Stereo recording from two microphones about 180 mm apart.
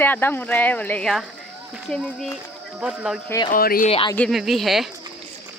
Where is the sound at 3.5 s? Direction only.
50° left (ahead or behind).